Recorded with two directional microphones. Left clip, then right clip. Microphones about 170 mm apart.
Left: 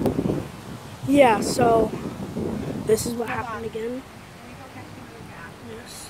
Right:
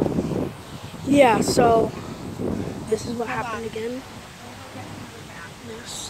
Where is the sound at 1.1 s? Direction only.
10° left (ahead or behind).